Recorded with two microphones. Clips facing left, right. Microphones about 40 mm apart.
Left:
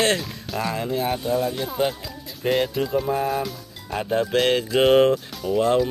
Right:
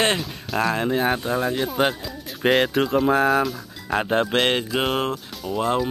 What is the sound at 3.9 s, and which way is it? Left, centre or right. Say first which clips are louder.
Speech: right 2 dB; right.